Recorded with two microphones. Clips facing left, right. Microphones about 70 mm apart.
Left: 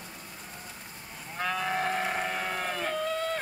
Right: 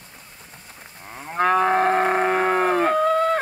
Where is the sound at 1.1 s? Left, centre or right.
Right.